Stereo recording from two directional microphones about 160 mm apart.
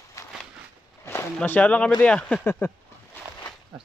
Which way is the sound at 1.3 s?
10° left (ahead or behind).